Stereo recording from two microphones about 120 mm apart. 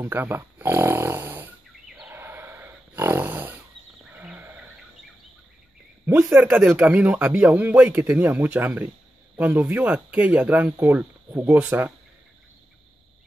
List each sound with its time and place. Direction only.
0.0 s snoring: 15° right (ahead or behind)
2.0 s a sound: 20° right (ahead or behind)
4.1 s wild animals: 15° right (ahead or behind)
6.0 s speech: 15° right (ahead or behind)